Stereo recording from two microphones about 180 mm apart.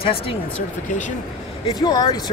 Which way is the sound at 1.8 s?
25° left (ahead or behind).